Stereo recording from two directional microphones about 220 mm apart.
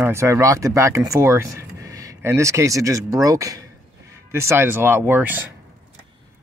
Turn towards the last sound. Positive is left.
turn(degrees=-10)  # may be behind; listen again after turning